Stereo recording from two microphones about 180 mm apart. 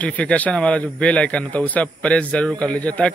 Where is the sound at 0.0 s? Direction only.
5° left (ahead or behind).